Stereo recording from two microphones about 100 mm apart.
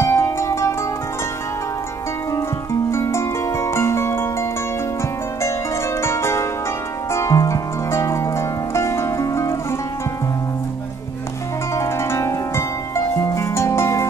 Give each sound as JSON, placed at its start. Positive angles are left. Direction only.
{"t": 0.0, "sound": "zither", "side_deg": 25}
{"t": 2.3, "sound": "music", "side_deg": 30}
{"t": 5.9, "sound": "zither", "side_deg": 25}
{"t": 7.1, "sound": "music", "side_deg": 30}
{"t": 11.7, "sound": "harp", "side_deg": 30}